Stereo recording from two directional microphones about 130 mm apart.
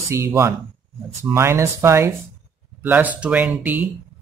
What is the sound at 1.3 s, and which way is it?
Speech, 20° right (ahead or behind).